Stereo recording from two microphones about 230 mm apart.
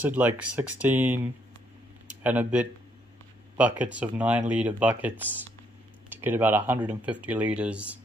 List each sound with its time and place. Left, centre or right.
0.0 s speech: centre